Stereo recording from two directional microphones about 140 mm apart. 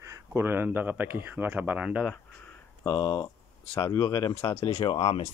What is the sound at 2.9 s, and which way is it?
Speech, 35° left (ahead or behind).